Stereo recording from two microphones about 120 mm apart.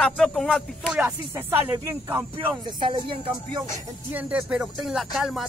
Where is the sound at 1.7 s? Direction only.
25° right (ahead or behind).